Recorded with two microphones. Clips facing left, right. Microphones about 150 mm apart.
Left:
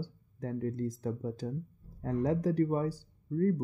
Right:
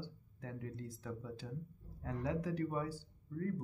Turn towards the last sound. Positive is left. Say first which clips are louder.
# left 11 dB
turn(degrees=40)  # may be behind; listen again after turning